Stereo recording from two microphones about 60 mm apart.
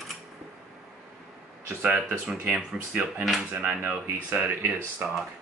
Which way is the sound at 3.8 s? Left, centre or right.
Right.